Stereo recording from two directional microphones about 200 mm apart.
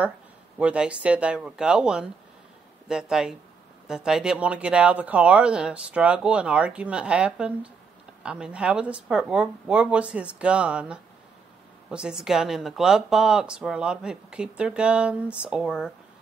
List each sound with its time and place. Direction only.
0.6 s speech: 5° right (ahead or behind)